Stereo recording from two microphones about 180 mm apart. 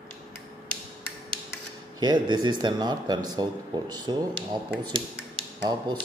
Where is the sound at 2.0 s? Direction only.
25° right (ahead or behind).